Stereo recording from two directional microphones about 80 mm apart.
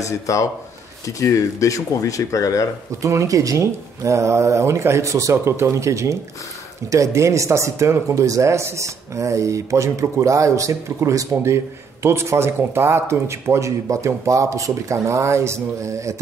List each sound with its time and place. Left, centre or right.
0.0 s speech: left
3.0 s speech: right